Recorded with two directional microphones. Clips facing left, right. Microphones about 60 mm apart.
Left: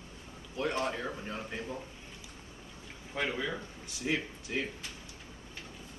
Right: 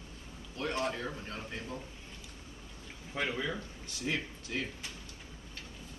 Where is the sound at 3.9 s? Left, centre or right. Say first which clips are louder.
Left 2 dB; centre.